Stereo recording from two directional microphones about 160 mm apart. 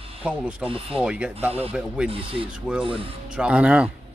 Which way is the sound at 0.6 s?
35° right (ahead or behind).